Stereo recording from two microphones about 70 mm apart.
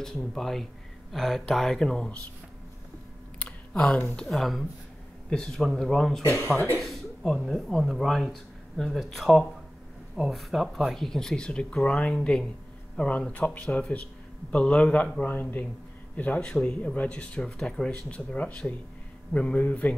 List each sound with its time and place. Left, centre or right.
0.0 s speech: centre
3.3 s a sound: centre
4.2 s speech: centre
6.2 s speech: left
6.8 s speech: centre; by 17.4 s left
17.4 s speech: centre
18.1 s speech: centre